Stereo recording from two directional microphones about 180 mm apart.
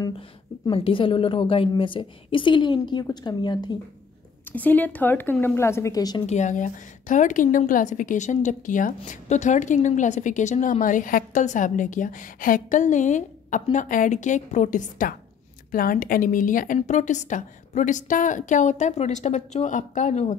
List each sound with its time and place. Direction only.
0.7 s a woman's voice: 30° left (ahead or behind)
4.5 s a woman's voice: 10° left (ahead or behind)
6.2 s a woman's voice: 40° left (ahead or behind)